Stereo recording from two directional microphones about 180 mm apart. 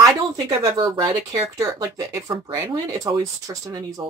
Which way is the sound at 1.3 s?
15° right (ahead or behind).